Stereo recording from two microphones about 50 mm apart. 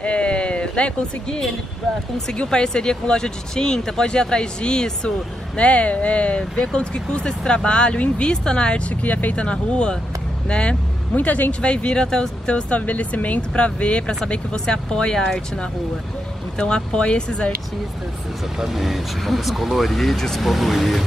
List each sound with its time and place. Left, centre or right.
0.0 s a sound: left
2.2 s speech: centre
9.0 s speech: left
11.1 s speech: left
11.6 s speech: left
18.6 s speech: centre